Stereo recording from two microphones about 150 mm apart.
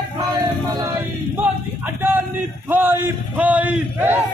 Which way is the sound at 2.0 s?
15° right (ahead or behind).